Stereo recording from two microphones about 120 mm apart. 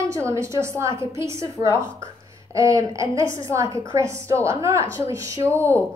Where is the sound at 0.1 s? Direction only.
25° right (ahead or behind).